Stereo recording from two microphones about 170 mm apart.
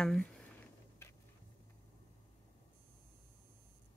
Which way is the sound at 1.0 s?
15° left (ahead or behind).